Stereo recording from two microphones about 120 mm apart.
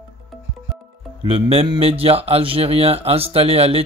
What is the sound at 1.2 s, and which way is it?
Speech, 55° right (ahead or behind).